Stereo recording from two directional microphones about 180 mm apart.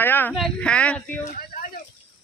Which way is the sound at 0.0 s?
10° left (ahead or behind).